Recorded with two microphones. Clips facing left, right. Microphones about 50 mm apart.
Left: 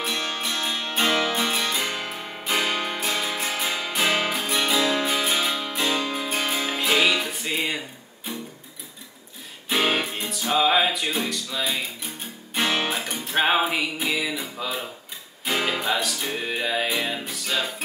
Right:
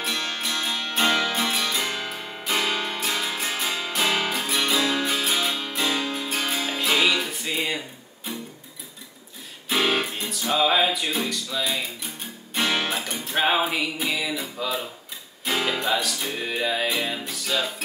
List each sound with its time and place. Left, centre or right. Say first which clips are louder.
0.0 s music: left 1 dB; centre
1.2 s music: left 1 dB; centre
9.7 s music: even; centre